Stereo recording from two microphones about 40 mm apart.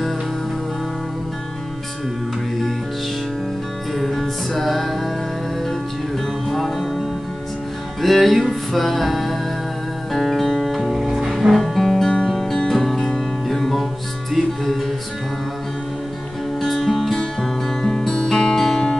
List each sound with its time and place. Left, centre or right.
3.9 s music: centre
6.5 s music: centre
8.0 s music: centre
11.3 s music: centre
12.0 s music: centre
12.3 s music: centre
16.5 s music: centre